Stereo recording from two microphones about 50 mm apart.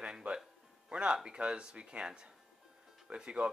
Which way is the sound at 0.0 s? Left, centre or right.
Right.